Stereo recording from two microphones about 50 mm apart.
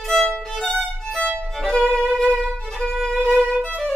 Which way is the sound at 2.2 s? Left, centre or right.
Right.